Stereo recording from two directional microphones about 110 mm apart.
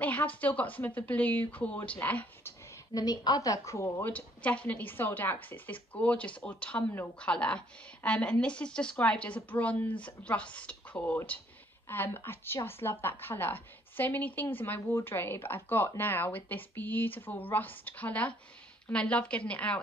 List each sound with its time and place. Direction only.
0.0 s a woman's voice: 15° left (ahead or behind)
2.9 s a woman's voice: 35° left (ahead or behind); by 19.8 s 10° left (ahead or behind)